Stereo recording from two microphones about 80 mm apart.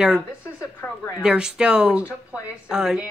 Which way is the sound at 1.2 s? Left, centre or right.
Centre.